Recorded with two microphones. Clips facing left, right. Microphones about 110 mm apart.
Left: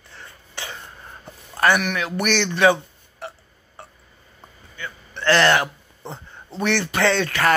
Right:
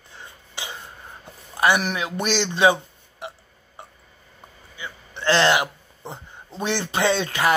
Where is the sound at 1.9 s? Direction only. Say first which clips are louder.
Left 2 dB; 20° right (ahead or behind).